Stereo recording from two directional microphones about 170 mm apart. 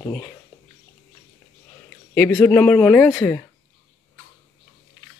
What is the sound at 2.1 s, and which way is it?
Speech, 10° left (ahead or behind).